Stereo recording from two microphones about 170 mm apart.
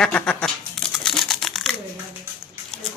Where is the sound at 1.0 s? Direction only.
Centre (ahead or behind).